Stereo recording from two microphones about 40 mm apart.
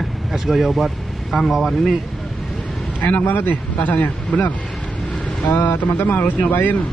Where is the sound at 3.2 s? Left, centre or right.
Left.